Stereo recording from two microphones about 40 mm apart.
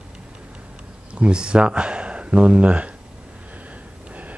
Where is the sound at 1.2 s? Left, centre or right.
Right.